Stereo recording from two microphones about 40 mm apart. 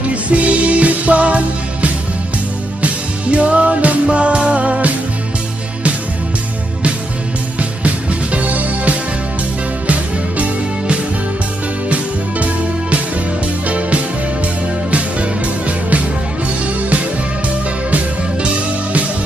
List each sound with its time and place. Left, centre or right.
0.1 s music: right
7.5 s music: right
13.7 s music: right